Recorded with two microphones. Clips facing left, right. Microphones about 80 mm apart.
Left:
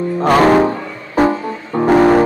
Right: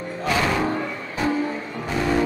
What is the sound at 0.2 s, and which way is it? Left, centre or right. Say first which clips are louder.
Music: left 12 dB; left.